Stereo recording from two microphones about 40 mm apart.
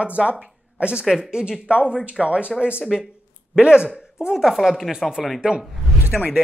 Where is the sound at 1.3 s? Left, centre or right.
Right.